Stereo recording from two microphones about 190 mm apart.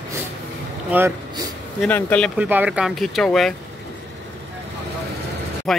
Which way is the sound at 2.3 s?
10° right (ahead or behind).